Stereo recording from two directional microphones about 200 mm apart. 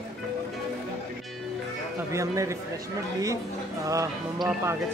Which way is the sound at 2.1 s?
15° right (ahead or behind).